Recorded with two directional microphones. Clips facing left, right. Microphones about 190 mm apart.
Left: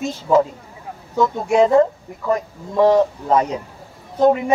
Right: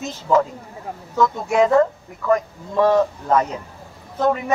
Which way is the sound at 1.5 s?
25° left (ahead or behind).